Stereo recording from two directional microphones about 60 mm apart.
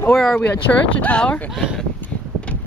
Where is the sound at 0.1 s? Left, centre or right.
Centre.